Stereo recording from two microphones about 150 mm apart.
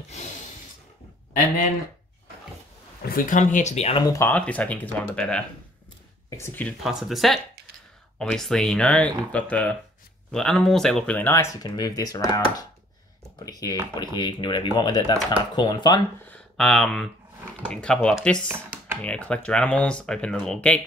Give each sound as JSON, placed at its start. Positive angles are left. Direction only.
{"t": 3.1, "sound": "speech", "side_deg": 60}
{"t": 4.0, "sound": "speech", "side_deg": 20}
{"t": 4.3, "sound": "speech", "side_deg": 10}
{"t": 6.8, "sound": "speech", "side_deg": 0}
{"t": 16.3, "sound": "speech", "side_deg": 0}